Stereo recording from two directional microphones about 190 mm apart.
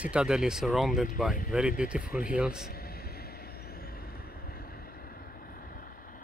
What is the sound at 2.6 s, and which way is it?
Vehicle, 55° left (ahead or behind).